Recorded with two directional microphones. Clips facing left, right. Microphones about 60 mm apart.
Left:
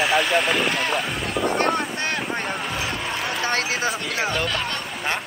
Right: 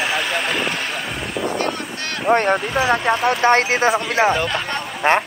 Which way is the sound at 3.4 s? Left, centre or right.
Right.